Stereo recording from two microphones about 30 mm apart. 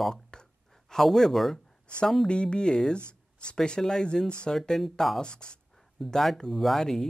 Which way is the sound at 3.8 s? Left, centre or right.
Centre.